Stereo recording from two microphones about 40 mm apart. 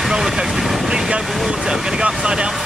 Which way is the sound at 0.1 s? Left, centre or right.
Centre.